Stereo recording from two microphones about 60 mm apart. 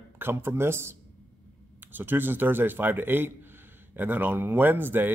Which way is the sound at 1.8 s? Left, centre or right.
Right.